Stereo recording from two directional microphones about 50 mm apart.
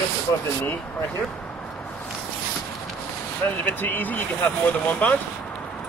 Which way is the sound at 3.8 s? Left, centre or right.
Left.